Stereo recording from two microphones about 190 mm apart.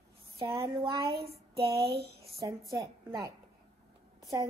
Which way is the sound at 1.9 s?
55° right (ahead or behind).